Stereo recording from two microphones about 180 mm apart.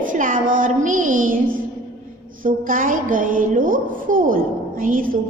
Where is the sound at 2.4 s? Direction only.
50° right (ahead or behind).